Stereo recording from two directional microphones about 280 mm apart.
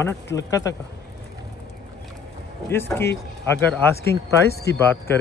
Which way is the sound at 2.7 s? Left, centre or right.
Centre.